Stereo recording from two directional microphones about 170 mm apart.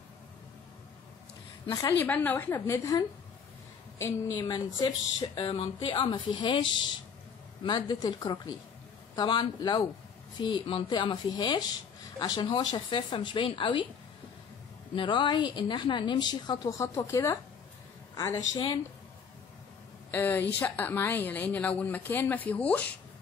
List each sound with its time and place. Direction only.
1.7 s a woman's voice: 20° left (ahead or behind)
4.5 s a woman's voice: 25° left (ahead or behind)
15.0 s a woman's voice: 25° left (ahead or behind)
20.1 s a woman's voice: 10° left (ahead or behind)